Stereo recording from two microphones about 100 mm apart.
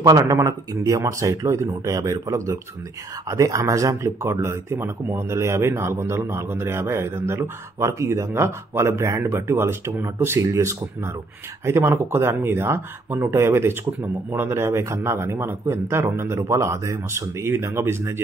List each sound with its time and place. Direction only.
0.0 s speech: 35° right (ahead or behind)